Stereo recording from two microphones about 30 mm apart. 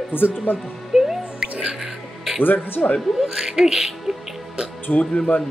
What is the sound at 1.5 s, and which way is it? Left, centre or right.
Music, right.